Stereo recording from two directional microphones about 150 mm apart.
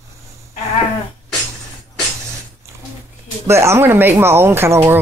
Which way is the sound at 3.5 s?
15° right (ahead or behind).